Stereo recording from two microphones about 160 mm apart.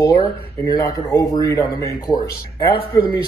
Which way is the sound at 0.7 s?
25° left (ahead or behind).